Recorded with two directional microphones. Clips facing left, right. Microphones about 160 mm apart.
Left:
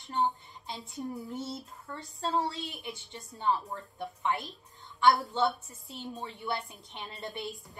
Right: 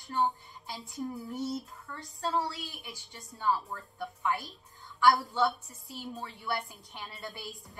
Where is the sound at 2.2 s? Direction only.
25° left (ahead or behind).